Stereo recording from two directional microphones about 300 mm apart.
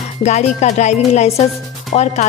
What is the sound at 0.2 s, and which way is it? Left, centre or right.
Music, left.